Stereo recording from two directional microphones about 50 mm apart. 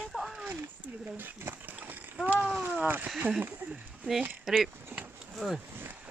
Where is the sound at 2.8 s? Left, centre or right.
Right.